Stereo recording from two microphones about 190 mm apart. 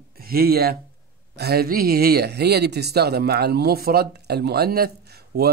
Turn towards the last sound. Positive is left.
turn(degrees=-55)  # may be behind; listen again after turning